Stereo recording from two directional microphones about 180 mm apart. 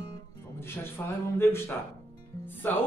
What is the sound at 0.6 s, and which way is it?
A man's voice, 15° left (ahead or behind).